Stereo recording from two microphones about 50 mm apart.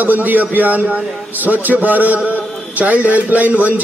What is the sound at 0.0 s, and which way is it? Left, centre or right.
A man's voice, right.